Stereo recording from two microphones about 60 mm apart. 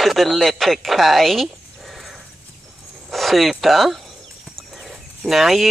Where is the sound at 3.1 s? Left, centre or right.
Centre.